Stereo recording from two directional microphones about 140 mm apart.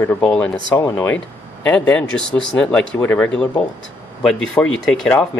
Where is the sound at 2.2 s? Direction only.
35° right (ahead or behind).